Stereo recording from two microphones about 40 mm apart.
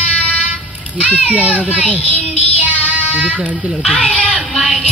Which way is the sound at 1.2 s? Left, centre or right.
Right.